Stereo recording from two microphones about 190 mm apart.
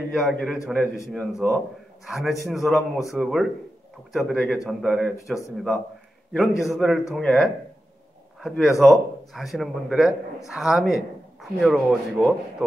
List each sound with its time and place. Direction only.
0.1 s a man's voice: centre (ahead or behind)
0.7 s a man's voice: 15° left (ahead or behind)
2.0 s a man's voice: centre (ahead or behind)